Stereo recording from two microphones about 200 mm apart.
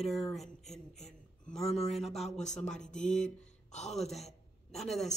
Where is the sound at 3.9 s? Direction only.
Centre (ahead or behind).